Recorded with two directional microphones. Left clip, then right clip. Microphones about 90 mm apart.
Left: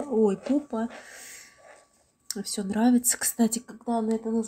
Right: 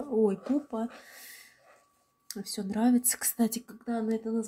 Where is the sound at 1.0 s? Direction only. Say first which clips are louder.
Left 4 dB; 10° left (ahead or behind).